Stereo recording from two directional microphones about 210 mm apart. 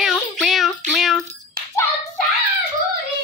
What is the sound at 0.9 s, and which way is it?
Wind chime, centre (ahead or behind).